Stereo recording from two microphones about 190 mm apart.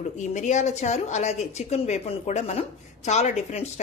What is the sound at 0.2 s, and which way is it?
A woman's voice, 40° left (ahead or behind).